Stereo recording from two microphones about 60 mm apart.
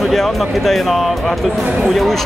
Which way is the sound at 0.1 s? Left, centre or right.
Centre.